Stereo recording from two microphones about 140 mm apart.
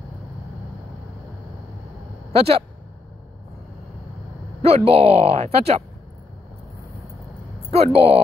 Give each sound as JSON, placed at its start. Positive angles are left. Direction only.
{"t": 2.3, "sound": "speech", "side_deg": -45}
{"t": 4.6, "sound": "speech", "side_deg": -45}
{"t": 7.7, "sound": "speech", "side_deg": -45}